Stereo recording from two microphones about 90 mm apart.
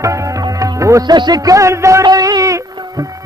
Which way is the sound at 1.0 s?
55° right (ahead or behind).